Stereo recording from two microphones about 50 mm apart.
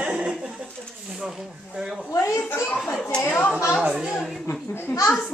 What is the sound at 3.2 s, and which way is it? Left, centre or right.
Speech, left.